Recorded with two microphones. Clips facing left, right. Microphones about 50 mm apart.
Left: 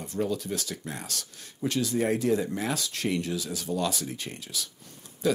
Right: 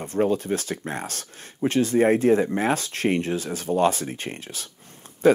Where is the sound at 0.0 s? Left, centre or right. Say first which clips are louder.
Right 7 dB; right.